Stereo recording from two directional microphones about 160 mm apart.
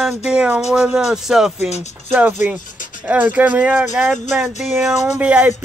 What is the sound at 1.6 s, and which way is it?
Speech, 45° left (ahead or behind).